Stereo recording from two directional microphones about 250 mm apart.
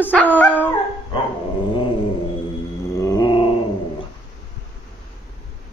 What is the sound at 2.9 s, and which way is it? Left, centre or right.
Mantra, centre.